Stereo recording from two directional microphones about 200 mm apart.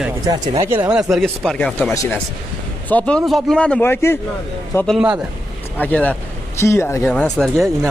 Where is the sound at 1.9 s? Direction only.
15° left (ahead or behind).